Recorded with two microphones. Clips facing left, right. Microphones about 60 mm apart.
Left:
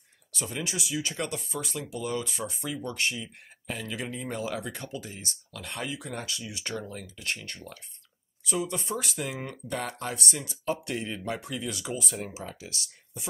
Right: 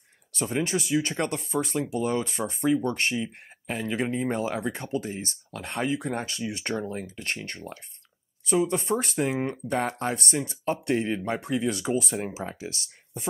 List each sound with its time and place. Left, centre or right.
0.4 s speech: right